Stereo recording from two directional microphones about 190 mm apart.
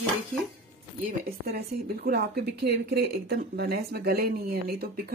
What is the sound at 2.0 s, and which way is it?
Speech, 60° right (ahead or behind).